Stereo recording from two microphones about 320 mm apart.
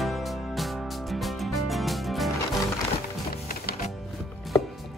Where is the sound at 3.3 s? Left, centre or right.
Left.